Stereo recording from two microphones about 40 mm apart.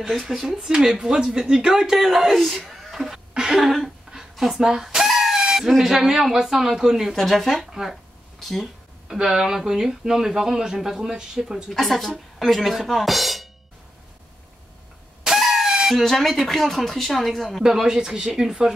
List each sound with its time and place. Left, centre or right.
0.1 s speech: centre
3.3 s a sound: centre
3.6 s speech: centre
4.1 s a sound: centre
5.0 s chicken: centre
5.7 s speech: centre
7.2 s speech: centre
7.5 s speech: centre
8.4 s speech: centre
9.0 s speech: centre
11.7 s speech: centre
15.2 s a sound: centre
16.0 s speech: centre
17.6 s speech: centre